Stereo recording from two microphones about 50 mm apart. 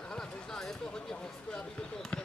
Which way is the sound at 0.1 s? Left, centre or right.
Centre.